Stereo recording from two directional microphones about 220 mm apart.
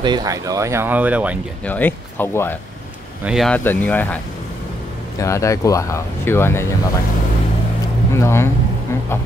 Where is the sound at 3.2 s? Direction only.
Centre (ahead or behind).